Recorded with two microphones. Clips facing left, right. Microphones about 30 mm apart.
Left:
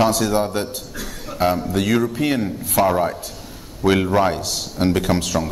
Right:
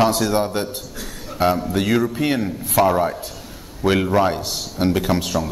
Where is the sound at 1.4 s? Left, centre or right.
Centre.